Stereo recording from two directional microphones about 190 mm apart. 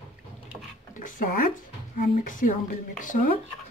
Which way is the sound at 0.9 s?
45° left (ahead or behind).